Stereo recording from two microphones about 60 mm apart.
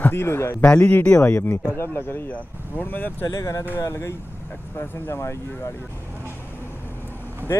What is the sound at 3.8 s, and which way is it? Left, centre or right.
Speech, left.